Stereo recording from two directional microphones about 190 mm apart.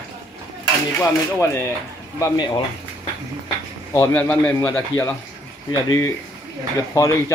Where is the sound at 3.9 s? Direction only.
15° left (ahead or behind).